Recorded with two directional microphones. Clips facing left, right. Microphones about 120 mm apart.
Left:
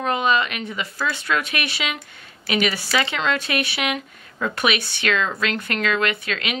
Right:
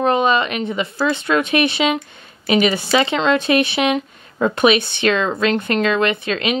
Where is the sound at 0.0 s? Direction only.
30° right (ahead or behind).